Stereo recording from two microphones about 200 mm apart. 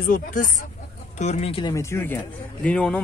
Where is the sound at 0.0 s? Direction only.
40° left (ahead or behind).